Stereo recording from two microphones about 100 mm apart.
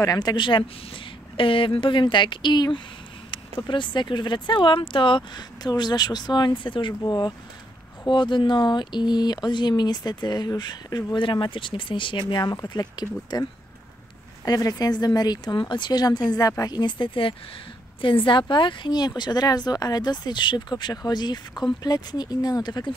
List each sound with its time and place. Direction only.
0.0 s speech: 40° left (ahead or behind); by 6.9 s 55° left (ahead or behind)
6.9 s speech: 40° left (ahead or behind)
14.4 s speech: 40° left (ahead or behind)